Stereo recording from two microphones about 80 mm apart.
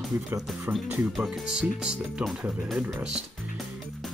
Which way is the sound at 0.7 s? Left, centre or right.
Right.